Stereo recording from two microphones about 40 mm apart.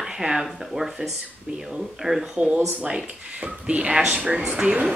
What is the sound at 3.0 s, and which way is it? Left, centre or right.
Speech, right.